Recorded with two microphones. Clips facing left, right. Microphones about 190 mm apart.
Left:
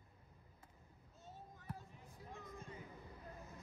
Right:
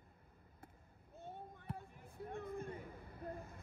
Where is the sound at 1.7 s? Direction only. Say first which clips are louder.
Right 3 dB; 60° right (ahead or behind).